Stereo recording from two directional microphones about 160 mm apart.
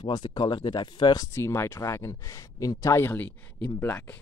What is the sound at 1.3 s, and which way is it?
Speech, 15° left (ahead or behind).